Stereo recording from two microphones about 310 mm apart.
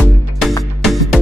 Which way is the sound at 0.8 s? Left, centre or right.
Centre.